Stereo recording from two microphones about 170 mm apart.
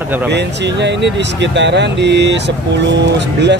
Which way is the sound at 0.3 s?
90° right.